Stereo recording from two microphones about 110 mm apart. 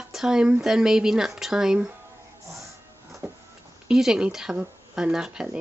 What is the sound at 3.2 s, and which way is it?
Printer, 20° right (ahead or behind).